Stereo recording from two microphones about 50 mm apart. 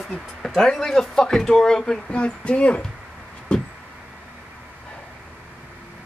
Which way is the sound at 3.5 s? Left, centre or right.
Centre.